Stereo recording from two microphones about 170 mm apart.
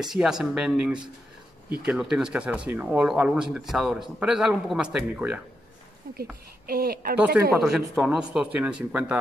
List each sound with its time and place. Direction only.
0.0 s speech: 5° right (ahead or behind)
6.0 s a woman's voice: 65° right (ahead or behind)
7.5 s speech: 5° right (ahead or behind)